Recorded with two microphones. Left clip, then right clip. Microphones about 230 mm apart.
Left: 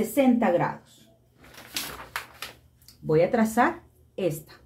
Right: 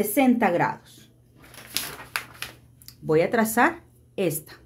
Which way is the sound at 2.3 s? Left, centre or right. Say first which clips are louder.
Right 2 dB; right.